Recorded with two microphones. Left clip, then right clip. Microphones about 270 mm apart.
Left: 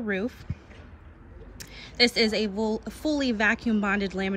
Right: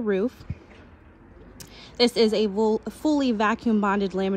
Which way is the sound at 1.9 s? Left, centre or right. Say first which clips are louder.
Right 2 dB; centre.